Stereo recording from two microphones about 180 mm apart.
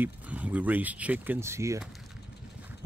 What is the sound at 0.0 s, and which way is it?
Speech, 10° right (ahead or behind).